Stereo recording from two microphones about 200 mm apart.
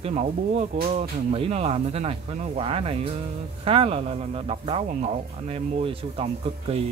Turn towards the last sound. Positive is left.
turn(degrees=-30)  # may be behind; listen again after turning